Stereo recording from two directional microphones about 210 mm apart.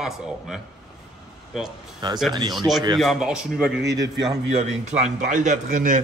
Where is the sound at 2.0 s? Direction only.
20° right (ahead or behind).